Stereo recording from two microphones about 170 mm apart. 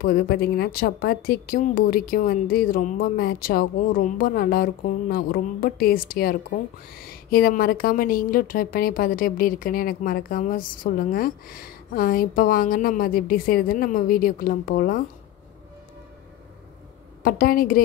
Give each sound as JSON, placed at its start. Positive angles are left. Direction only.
{"t": 0.0, "sound": "a woman's voice", "side_deg": 65}
{"t": 17.2, "sound": "a woman's voice", "side_deg": 55}